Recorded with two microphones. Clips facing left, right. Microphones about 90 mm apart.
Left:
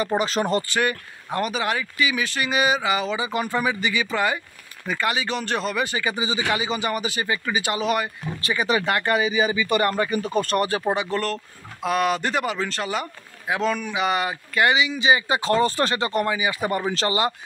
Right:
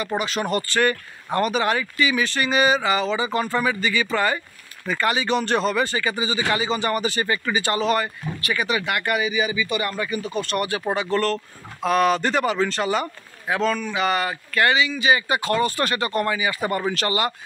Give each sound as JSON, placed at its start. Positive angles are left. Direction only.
{"t": 0.2, "sound": "speech", "side_deg": 30}
{"t": 0.7, "sound": "speech", "side_deg": 10}
{"t": 8.4, "sound": "speech", "side_deg": 30}
{"t": 10.8, "sound": "speech", "side_deg": 10}